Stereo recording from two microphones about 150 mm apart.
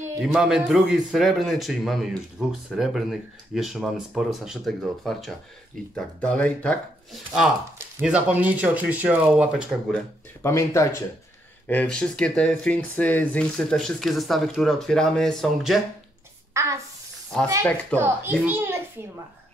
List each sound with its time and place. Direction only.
0.2 s a man's voice: 5° right (ahead or behind)
8.0 s speech: 10° right (ahead or behind)
10.4 s a man's voice: 20° left (ahead or behind); by 15.8 s centre (ahead or behind)
16.5 s a sound: 20° right (ahead or behind)
17.9 s a child's voice: 15° right (ahead or behind)